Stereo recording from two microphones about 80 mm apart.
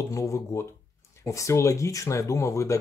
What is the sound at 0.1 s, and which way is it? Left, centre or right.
Speech, left.